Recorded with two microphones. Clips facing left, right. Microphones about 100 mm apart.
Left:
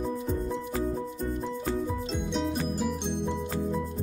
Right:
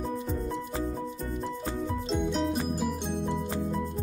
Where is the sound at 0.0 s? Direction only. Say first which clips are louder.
Left 2 dB; centre (ahead or behind).